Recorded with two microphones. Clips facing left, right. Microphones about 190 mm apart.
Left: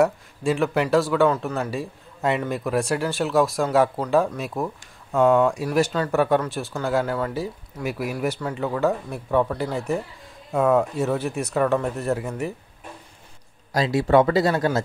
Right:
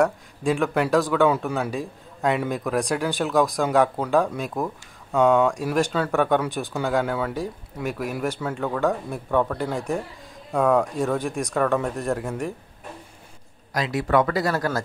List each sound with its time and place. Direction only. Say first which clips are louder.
0.0 s a man's voice: left 1 dB; centre (ahead or behind)
13.7 s speech: left 4 dB; 30° left (ahead or behind)